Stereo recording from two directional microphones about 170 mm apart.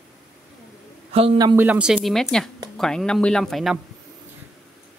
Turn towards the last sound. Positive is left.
turn(degrees=0)  # may be behind; listen again after turning